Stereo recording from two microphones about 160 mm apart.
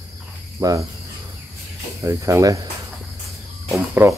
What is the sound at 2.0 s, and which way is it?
Speech, 20° right (ahead or behind).